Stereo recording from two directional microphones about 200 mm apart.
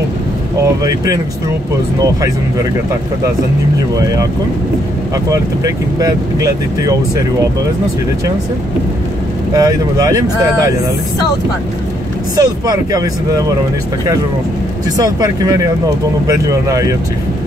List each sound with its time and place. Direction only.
0.8 s speech: 20° right (ahead or behind)
5.3 s speech: 15° right (ahead or behind)
9.6 s speech: 15° right (ahead or behind)
12.4 s speech: 20° right (ahead or behind)
15.0 s speech: 20° right (ahead or behind)